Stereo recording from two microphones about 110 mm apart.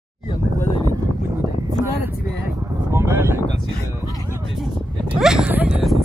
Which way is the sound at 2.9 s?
20° right (ahead or behind).